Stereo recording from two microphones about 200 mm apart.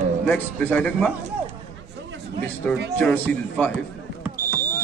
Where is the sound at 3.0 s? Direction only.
10° left (ahead or behind).